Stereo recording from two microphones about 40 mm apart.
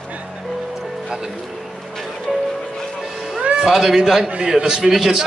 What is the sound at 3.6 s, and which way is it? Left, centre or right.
Speech, centre.